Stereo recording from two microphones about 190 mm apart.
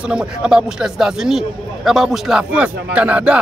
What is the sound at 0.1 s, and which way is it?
Speech, 5° right (ahead or behind).